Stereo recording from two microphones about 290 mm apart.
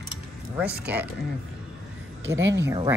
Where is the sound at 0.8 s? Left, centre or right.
Centre.